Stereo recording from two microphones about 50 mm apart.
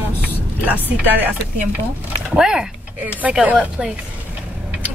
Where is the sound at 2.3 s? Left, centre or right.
Centre.